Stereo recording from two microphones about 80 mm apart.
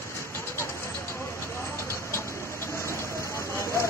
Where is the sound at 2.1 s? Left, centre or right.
Left.